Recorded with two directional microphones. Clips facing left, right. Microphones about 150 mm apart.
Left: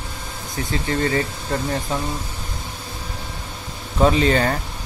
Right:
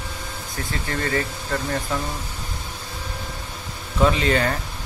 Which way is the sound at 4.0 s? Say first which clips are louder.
Left 3 dB; 35° left (ahead or behind).